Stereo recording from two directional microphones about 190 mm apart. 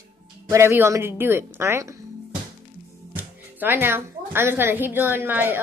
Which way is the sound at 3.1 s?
10° right (ahead or behind).